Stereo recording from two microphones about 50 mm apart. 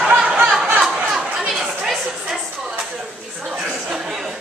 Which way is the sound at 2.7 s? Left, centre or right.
Centre.